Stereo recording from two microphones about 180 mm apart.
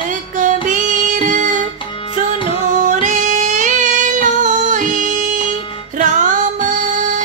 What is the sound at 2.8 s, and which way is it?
Female singing, 45° right (ahead or behind).